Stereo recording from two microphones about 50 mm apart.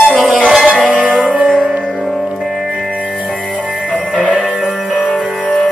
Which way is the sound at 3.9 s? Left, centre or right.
Centre.